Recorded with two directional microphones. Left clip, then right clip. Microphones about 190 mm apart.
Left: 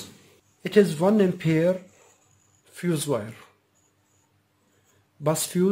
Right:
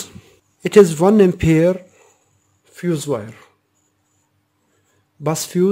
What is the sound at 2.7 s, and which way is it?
Speech, 25° right (ahead or behind).